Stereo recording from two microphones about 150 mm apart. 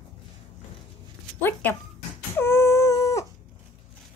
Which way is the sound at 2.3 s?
15° left (ahead or behind).